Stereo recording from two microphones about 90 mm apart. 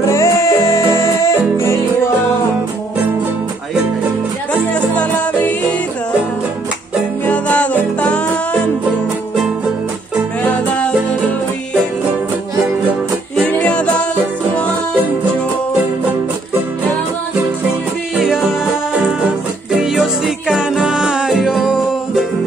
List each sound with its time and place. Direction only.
0.1 s music: 30° left (ahead or behind)
4.9 s music: 15° left (ahead or behind)
7.2 s music: 15° left (ahead or behind)
10.4 s music: 15° left (ahead or behind)
13.6 s music: 15° left (ahead or behind)
18.1 s music: 5° right (ahead or behind)
19.7 s music: 5° right (ahead or behind)